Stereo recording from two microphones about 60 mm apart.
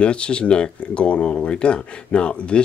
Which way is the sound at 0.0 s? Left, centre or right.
Centre.